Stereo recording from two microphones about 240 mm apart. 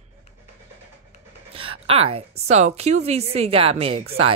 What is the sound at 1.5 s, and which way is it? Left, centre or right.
Speech, right.